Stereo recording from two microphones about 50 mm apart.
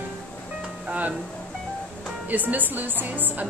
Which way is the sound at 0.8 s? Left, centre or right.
Right.